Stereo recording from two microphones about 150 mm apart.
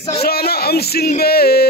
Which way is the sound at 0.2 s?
90° left.